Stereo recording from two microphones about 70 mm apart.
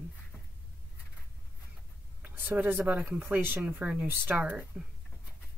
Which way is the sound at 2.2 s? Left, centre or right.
Right.